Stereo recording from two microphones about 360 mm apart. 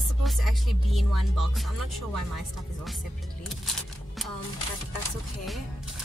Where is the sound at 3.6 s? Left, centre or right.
Centre.